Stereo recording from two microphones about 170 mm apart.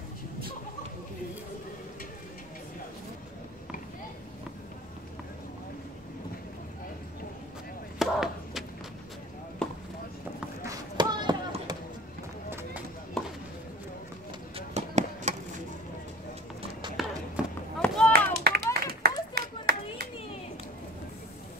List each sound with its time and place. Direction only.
8.0 s a sound: centre (ahead or behind)
9.6 s chop: 5° left (ahead or behind)
10.6 s basketball bounce: 20° right (ahead or behind)
13.2 s chop: centre (ahead or behind)
14.7 s music: 40° right (ahead or behind)
16.8 s run: 30° right (ahead or behind)
17.4 s run: 5° right (ahead or behind)
18.4 s clapping: 65° right (ahead or behind)